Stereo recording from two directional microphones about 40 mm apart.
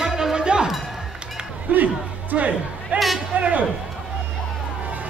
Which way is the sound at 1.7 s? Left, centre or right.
Right.